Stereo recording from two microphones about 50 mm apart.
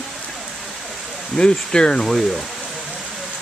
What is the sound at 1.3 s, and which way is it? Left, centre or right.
Speech, centre.